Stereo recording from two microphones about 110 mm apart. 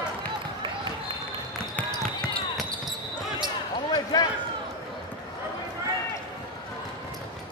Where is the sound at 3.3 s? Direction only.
35° left (ahead or behind).